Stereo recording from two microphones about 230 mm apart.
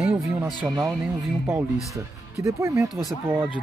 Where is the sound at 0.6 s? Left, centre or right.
Centre.